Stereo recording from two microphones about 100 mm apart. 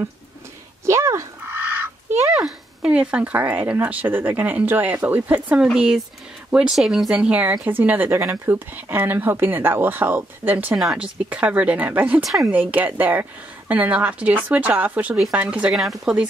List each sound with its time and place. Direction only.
0.8 s goose: 30° right (ahead or behind)
2.3 s speech: 5° right (ahead or behind)
10.8 s speech: 10° right (ahead or behind)
12.2 s speech: centre (ahead or behind)
12.4 s speech: 15° right (ahead or behind)